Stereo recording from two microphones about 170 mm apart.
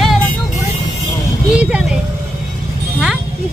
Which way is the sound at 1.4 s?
5° right (ahead or behind).